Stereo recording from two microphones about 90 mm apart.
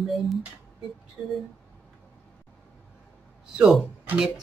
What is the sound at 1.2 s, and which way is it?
Speech, 15° right (ahead or behind).